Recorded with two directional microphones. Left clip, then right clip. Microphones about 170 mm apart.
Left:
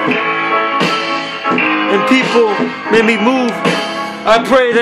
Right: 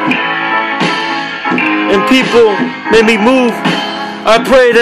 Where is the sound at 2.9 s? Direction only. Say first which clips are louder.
Right 4 dB; 15° right (ahead or behind).